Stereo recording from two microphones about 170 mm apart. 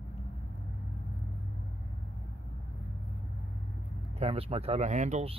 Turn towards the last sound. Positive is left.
turn(degrees=-40)  # may be behind; listen again after turning